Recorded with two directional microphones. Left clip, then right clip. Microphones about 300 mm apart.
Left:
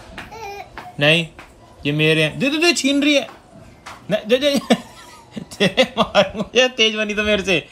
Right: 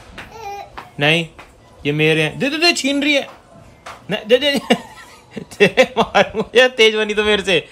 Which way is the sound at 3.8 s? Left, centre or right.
Centre.